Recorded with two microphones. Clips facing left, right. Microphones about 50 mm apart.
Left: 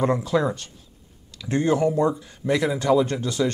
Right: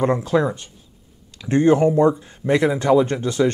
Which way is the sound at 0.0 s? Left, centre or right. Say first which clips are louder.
Right 3 dB; right.